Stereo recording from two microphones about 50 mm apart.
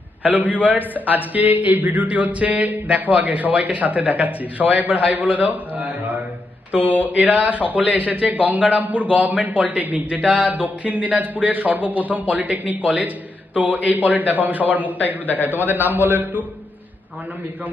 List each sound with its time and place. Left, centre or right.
0.2 s a man's voice: right
6.8 s mantra: left
7.2 s speech: right
10.2 s speech: right
10.5 s speech: right